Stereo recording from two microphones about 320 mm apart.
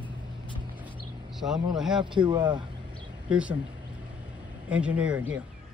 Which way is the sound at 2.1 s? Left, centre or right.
Centre.